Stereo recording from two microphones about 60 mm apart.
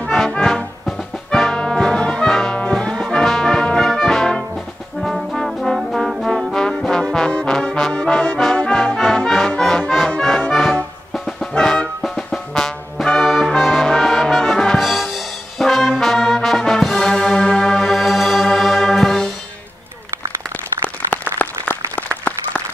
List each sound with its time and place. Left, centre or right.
0.1 s brass instrument: centre
7.6 s trombone: centre
8.5 s music: centre
11.2 s music: centre
12.2 s brass instrument: centre
14.8 s brass instrument: centre
18.6 s music: centre
21.1 s a sound: left